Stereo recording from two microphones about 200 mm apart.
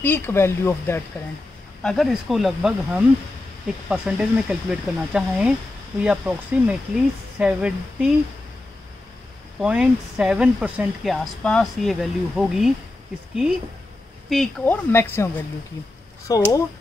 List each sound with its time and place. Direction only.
0.0 s speech: 10° left (ahead or behind)
1.8 s speech: centre (ahead or behind)
9.6 s speech: 5° right (ahead or behind)
14.3 s speech: 5° left (ahead or behind)